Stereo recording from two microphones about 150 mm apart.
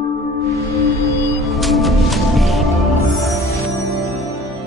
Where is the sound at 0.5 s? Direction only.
45° left (ahead or behind).